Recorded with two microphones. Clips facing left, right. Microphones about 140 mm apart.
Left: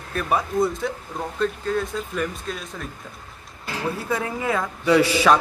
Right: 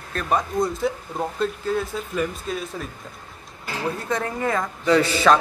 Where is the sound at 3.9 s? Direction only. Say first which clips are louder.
Even; 5° left (ahead or behind).